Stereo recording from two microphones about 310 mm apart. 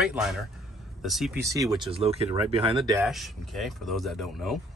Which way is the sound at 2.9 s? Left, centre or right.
Centre.